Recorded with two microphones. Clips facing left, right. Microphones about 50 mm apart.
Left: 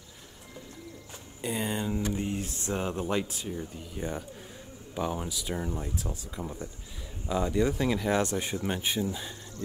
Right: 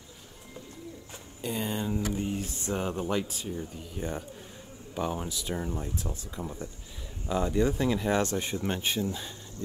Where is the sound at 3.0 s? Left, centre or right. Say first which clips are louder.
Even; centre.